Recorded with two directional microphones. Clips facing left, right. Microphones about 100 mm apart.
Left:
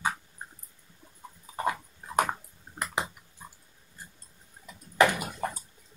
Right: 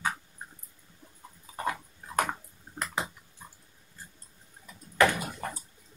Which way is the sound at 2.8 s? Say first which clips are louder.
Left 1 dB; 15° left (ahead or behind).